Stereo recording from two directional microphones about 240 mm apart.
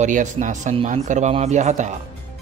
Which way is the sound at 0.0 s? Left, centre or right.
Right.